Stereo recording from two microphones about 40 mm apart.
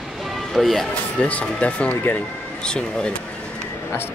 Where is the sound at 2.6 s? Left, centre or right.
Left.